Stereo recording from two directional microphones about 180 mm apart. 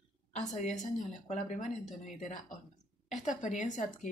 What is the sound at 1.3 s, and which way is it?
Speech, 40° left (ahead or behind).